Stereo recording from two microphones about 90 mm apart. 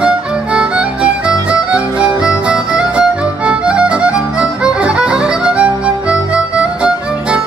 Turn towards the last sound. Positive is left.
turn(degrees=-10)  # may be behind; listen again after turning